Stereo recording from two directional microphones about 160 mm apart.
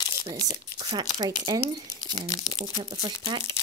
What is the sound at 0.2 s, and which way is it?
Speech, 20° right (ahead or behind).